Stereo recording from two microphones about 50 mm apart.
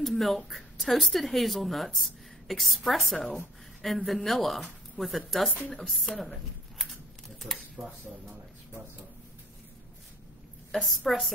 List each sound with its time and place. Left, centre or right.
0.0 s speech: centre
6.8 s typing: centre
7.7 s speech: centre
10.7 s a woman's voice: centre